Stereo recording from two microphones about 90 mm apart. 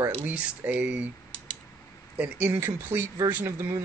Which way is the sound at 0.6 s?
20° right (ahead or behind).